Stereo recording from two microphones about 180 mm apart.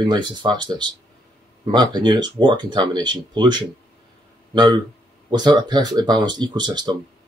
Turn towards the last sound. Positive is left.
turn(degrees=-25)  # may be behind; listen again after turning